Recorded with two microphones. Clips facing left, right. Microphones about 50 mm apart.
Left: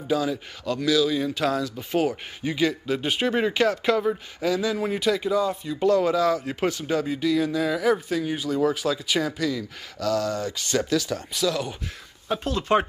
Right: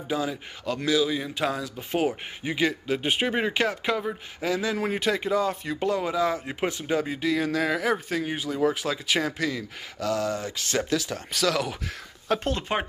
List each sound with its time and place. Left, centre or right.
0.1 s speech: right
5.8 s speech: right
6.4 s speech: centre
7.3 s speech: right
7.8 s speech: right
11.3 s speech: right
12.3 s speech: right
12.7 s speech: centre